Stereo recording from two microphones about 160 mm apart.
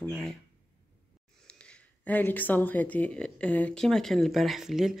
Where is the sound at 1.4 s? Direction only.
5° left (ahead or behind).